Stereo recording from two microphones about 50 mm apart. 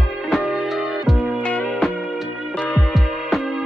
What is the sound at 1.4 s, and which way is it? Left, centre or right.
Music, left.